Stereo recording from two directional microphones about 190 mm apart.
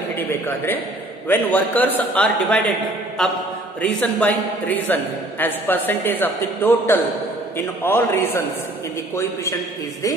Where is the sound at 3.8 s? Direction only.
5° left (ahead or behind).